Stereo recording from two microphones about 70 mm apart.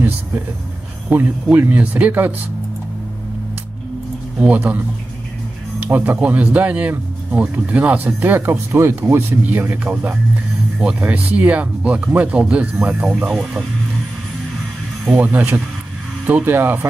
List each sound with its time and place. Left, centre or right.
1.1 s speech: right
4.4 s speech: right
8.4 s speech: right; by 13.6 s centre
15.1 s speech: right